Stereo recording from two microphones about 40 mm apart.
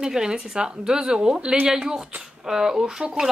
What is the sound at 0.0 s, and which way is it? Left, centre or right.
Speech, centre.